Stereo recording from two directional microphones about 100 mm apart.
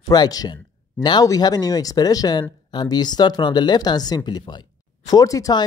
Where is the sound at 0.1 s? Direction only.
40° left (ahead or behind).